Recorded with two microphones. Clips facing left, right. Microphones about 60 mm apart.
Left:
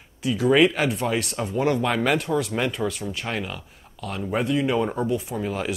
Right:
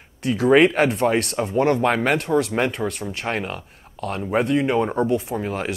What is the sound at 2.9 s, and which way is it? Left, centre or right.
Speech, right.